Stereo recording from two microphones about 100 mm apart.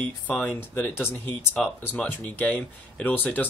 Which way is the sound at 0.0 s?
15° left (ahead or behind).